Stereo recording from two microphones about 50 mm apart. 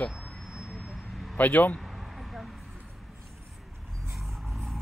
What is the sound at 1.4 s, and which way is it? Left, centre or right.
Speech, left.